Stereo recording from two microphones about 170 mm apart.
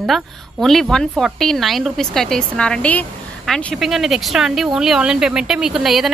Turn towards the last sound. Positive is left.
turn(degrees=0)  # may be behind; listen again after turning